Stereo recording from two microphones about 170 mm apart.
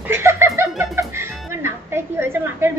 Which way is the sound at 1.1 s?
15° right (ahead or behind).